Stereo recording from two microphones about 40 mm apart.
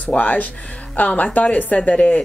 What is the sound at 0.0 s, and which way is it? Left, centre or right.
A woman's voice, left.